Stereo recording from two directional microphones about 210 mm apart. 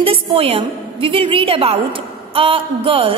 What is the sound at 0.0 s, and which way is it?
A woman's voice, 25° right (ahead or behind).